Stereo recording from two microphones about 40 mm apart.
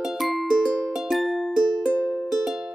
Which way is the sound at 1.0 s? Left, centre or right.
Centre.